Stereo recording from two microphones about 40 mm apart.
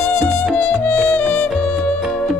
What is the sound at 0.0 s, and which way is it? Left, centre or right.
Music, left.